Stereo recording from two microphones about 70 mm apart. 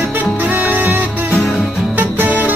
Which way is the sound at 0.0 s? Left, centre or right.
Right.